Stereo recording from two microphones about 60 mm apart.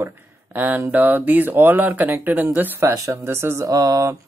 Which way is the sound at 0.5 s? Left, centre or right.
Right.